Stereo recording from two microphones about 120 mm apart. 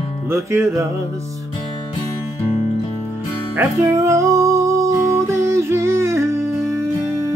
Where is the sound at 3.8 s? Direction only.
25° right (ahead or behind).